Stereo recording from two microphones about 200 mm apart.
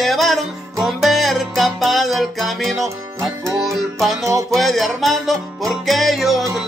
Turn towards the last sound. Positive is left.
turn(degrees=0)  # may be behind; listen again after turning